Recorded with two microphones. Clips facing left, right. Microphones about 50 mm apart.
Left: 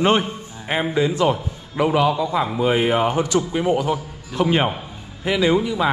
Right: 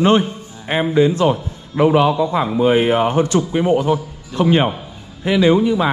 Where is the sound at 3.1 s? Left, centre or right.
Right.